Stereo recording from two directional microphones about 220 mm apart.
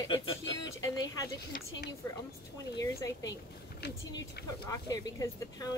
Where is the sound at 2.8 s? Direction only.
15° left (ahead or behind).